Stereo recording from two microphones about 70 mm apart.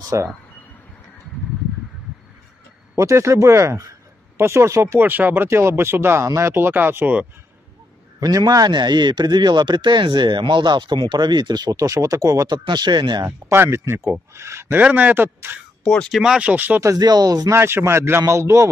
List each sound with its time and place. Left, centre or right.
0.1 s speech: right
3.0 s speech: right
5.0 s speech: right
8.2 s speech: right
12.4 s speech: right
13.6 s speech: right
14.7 s a man's voice: right
15.8 s speech: centre
16.1 s speech: centre
16.4 s a man's voice: right
17.0 s speech: right
17.6 s speech: right